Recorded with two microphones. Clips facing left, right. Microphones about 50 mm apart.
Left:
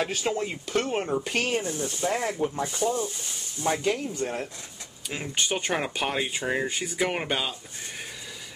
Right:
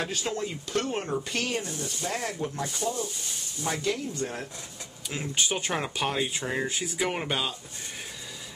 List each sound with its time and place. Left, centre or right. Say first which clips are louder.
0.1 s speech: left 3 dB; centre
4.1 s speech: left 3 dB; centre
6.6 s speech: left 2 dB; centre